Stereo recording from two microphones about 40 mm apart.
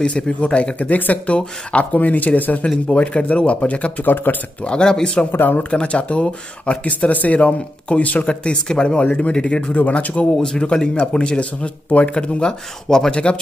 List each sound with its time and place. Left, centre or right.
0.0 s speech: left
0.7 s speech: left
2.9 s speech: left
4.0 s speech: left
4.6 s speech: left
5.3 s speech: left
5.6 s speech: left
6.9 s speech: left
10.3 s speech: centre; by 12.1 s left
12.1 s speech: left
12.8 s speech: centre
13.1 s speech: left